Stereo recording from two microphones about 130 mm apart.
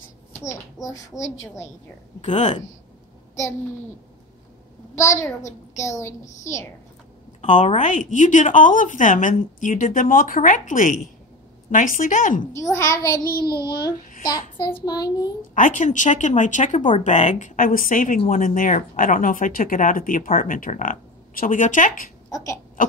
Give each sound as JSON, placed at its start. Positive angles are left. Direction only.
{"t": 0.4, "sound": "a child's voice", "side_deg": 25}
{"t": 2.2, "sound": "speech", "side_deg": 65}
{"t": 4.9, "sound": "a child's voice", "side_deg": 20}
{"t": 7.4, "sound": "a woman's voice", "side_deg": 75}
{"t": 12.7, "sound": "a child's voice", "side_deg": 25}
{"t": 14.6, "sound": "child singing", "side_deg": 30}
{"t": 15.5, "sound": "a woman's voice", "side_deg": 80}
{"t": 22.3, "sound": "speech", "side_deg": 25}
{"t": 22.8, "sound": "speech", "side_deg": 90}